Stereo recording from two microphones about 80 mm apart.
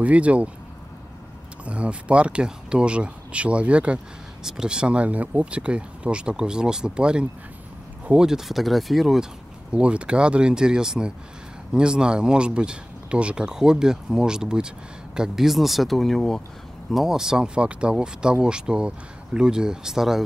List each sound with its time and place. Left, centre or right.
0.0 s speech: centre
1.6 s speech: centre
16.9 s speech: centre